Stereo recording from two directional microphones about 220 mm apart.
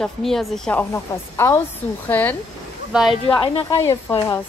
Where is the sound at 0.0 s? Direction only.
Centre (ahead or behind).